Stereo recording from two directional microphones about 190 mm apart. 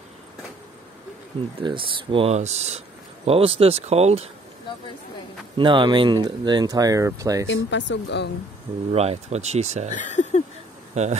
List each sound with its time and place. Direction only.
1.6 s speech: 25° right (ahead or behind)
5.6 s speech: 25° right (ahead or behind)
7.4 s speech: 75° left (ahead or behind)
8.9 s speech: 35° right (ahead or behind)
9.8 s speech: 35° left (ahead or behind)
10.9 s speech: 35° right (ahead or behind)